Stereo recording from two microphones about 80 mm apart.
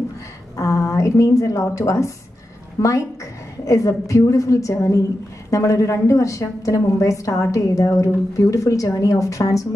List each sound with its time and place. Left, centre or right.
0.6 s a woman's voice: left